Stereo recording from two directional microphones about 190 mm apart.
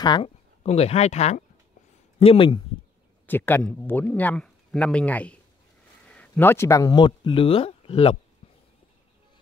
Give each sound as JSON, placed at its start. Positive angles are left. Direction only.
{"t": 0.0, "sound": "speech", "side_deg": 25}
{"t": 0.7, "sound": "speech", "side_deg": 35}
{"t": 3.3, "sound": "speech", "side_deg": 10}